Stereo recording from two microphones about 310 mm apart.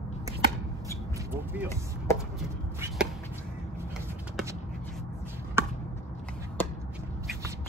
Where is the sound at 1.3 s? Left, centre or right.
Centre.